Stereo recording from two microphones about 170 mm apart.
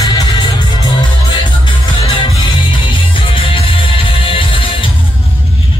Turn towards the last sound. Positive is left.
turn(degrees=30)  # may be behind; listen again after turning